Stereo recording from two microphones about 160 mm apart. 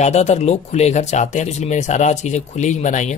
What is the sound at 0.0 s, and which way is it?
Speech, 45° left (ahead or behind).